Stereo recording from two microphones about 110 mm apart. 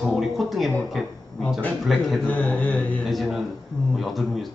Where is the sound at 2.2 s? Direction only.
15° left (ahead or behind).